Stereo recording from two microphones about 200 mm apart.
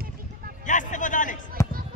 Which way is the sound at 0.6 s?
40° left (ahead or behind).